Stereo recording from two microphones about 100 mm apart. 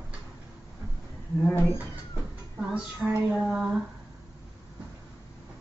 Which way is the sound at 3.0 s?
10° right (ahead or behind).